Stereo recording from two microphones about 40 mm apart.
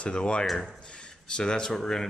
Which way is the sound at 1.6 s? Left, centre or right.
Centre.